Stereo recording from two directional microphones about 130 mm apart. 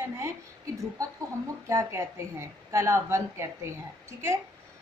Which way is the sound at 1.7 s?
20° right (ahead or behind).